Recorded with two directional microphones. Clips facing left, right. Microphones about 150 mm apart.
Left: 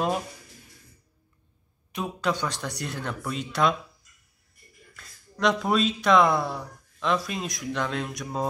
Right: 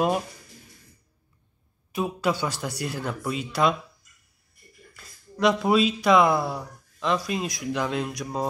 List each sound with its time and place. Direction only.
1.9 s speech: 5° right (ahead or behind)
4.9 s speech: 5° right (ahead or behind)